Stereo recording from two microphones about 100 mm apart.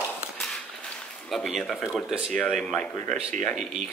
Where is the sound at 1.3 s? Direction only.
Centre (ahead or behind).